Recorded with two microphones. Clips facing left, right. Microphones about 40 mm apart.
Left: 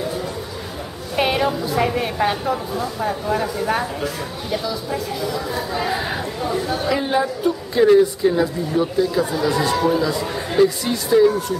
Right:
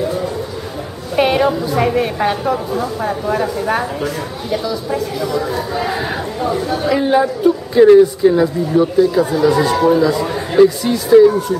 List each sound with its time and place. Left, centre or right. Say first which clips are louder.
1.1 s a woman's voice: right 5 dB; centre